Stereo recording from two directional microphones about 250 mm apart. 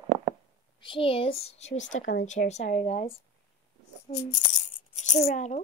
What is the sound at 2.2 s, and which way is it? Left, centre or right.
A woman's voice, left.